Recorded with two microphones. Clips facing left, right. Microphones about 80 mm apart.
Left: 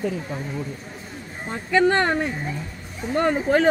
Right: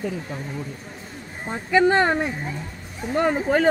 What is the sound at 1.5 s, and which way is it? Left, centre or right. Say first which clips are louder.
Speech: right 1 dB; centre.